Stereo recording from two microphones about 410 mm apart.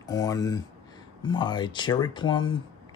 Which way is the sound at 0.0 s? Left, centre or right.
Centre.